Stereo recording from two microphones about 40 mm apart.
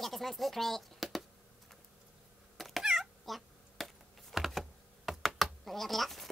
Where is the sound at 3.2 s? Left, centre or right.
Centre.